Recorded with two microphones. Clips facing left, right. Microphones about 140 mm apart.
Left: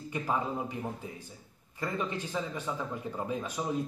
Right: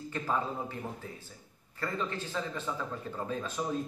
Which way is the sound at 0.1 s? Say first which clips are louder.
Left 1 dB; 15° left (ahead or behind).